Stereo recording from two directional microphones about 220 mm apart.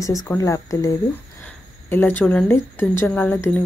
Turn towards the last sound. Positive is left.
turn(degrees=10)  # may be behind; listen again after turning